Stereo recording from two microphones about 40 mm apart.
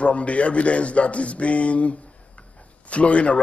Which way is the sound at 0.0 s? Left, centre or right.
Left.